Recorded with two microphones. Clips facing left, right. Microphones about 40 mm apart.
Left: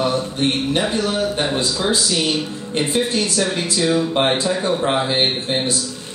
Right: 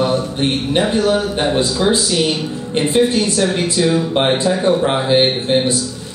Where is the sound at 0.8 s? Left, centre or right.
Centre.